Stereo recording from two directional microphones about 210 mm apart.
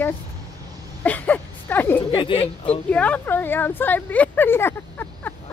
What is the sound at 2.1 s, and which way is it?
Speech, 25° left (ahead or behind).